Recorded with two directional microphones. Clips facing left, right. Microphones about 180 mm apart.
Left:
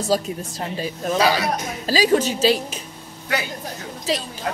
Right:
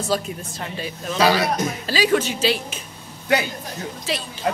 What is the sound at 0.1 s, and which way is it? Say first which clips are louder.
Speech: left 4 dB; 40° left (ahead or behind).